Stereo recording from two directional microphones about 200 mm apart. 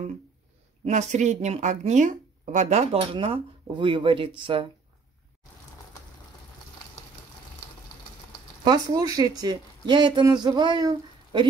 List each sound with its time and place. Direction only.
0.8 s speech: 35° right (ahead or behind)
8.6 s speech: 20° right (ahead or behind)